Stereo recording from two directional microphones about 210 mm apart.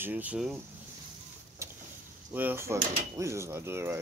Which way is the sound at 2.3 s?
10° right (ahead or behind).